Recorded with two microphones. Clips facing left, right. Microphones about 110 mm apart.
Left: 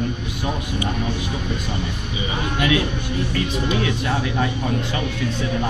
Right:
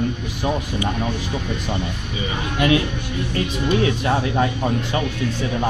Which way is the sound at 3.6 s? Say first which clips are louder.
Right 7 dB; 35° right (ahead or behind).